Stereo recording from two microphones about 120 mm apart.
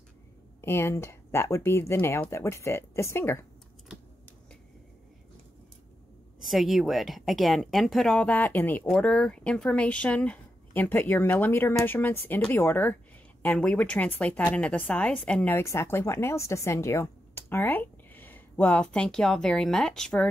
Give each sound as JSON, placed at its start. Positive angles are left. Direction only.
{"t": 0.6, "sound": "speech", "side_deg": 20}
{"t": 6.4, "sound": "speech", "side_deg": 0}